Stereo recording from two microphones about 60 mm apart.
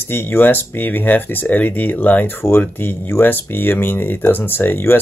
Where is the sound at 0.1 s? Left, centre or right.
Left.